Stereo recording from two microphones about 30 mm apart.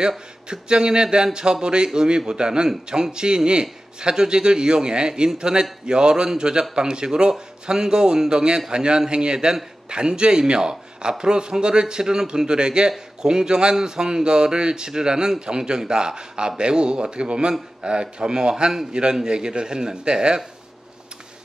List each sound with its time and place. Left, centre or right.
0.5 s speech: right